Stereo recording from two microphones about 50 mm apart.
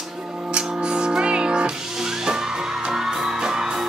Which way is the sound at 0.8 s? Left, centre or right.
Centre.